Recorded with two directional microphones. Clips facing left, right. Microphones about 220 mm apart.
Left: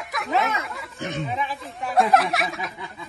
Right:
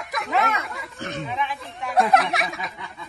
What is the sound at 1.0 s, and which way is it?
Speech, 20° left (ahead or behind).